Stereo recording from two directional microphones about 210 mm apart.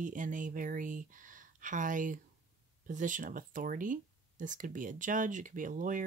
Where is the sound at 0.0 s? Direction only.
40° right (ahead or behind).